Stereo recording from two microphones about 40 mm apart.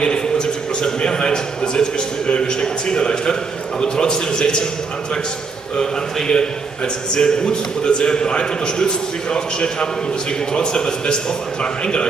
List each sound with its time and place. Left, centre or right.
0.0 s a sound: centre
3.8 s a man's voice: centre
5.8 s a man's voice: centre